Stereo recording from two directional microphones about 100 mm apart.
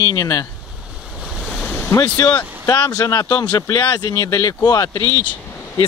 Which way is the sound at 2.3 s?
40° left (ahead or behind).